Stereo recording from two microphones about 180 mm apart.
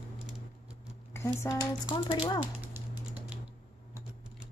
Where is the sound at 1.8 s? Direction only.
30° left (ahead or behind).